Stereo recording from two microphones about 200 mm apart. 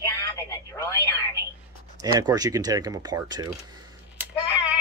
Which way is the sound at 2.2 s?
20° right (ahead or behind).